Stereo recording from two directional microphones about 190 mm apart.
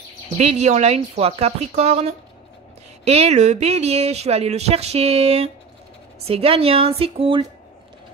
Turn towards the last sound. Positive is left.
turn(degrees=-30)  # may be behind; listen again after turning